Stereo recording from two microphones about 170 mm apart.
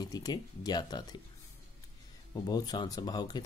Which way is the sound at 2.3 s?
25° left (ahead or behind).